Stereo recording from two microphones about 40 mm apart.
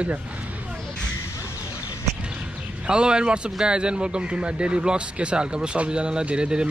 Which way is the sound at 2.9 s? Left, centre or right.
Right.